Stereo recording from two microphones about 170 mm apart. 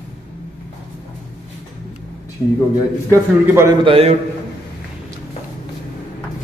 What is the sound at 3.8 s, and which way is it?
Speech, 35° right (ahead or behind).